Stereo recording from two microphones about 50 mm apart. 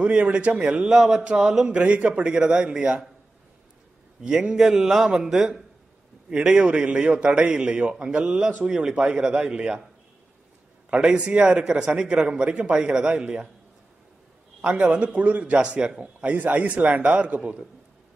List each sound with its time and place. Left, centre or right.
0.0 s a man's voice: right
0.9 s a man's voice: centre
1.7 s a man's voice: right
4.2 s a man's voice: centre
8.6 s a man's voice: centre
10.9 s a man's voice: centre
14.7 s a man's voice: right